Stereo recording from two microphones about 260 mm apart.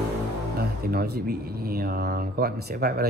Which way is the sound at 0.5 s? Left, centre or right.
Right.